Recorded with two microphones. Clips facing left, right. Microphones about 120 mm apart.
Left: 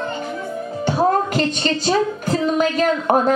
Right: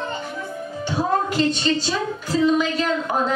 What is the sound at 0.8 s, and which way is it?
A woman's voice, 55° left (ahead or behind).